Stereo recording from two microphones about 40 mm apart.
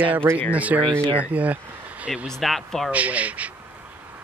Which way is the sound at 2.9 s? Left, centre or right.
Right.